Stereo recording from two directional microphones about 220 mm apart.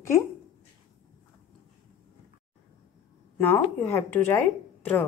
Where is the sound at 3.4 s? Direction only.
10° left (ahead or behind).